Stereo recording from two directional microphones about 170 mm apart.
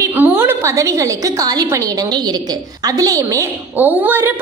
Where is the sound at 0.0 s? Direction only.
10° right (ahead or behind).